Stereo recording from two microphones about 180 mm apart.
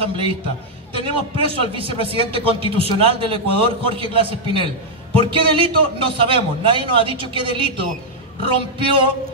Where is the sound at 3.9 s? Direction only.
30° right (ahead or behind).